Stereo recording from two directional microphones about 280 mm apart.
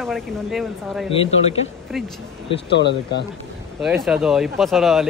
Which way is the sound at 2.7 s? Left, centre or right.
Left.